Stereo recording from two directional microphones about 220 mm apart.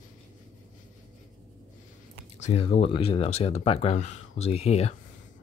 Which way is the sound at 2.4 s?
30° left (ahead or behind).